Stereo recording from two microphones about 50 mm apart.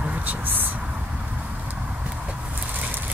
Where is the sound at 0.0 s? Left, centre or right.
Right.